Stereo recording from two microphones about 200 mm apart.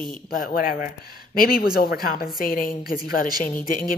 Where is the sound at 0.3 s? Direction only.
45° left (ahead or behind).